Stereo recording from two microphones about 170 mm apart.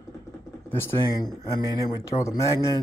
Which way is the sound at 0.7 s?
15° left (ahead or behind).